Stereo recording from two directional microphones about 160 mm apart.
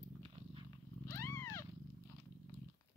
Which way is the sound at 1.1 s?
15° left (ahead or behind).